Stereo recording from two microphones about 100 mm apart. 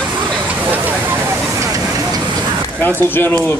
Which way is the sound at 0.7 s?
20° right (ahead or behind).